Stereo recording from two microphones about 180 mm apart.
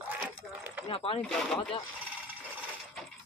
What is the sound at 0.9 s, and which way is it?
Speech, 30° left (ahead or behind).